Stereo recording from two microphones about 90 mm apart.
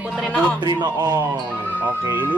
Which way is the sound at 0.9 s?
40° right (ahead or behind).